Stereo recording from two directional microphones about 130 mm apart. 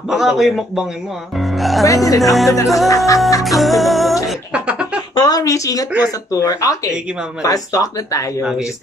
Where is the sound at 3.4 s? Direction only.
Centre (ahead or behind).